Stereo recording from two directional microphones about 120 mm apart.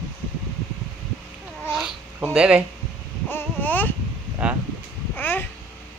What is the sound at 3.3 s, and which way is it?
Speech, 15° left (ahead or behind).